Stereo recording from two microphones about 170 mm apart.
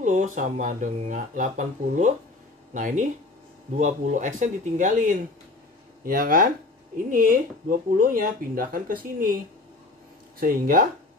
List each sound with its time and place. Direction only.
0.0 s speech: 45° right (ahead or behind)
10.4 s speech: 55° right (ahead or behind)